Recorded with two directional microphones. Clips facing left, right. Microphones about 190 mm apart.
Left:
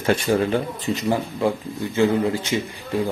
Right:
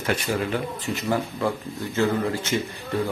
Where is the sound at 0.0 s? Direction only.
25° left (ahead or behind).